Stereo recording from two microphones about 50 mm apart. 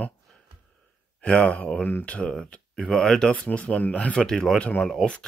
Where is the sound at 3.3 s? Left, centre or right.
Left.